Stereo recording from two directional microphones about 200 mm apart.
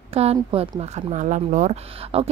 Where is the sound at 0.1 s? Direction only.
30° right (ahead or behind).